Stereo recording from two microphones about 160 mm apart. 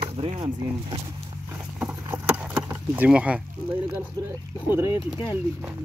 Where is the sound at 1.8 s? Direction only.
10° right (ahead or behind).